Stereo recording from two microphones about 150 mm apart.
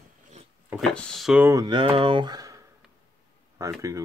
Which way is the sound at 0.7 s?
5° left (ahead or behind).